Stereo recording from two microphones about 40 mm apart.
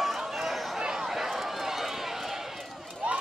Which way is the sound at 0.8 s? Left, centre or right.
Centre.